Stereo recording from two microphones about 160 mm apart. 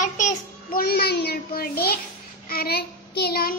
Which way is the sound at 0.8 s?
80° left.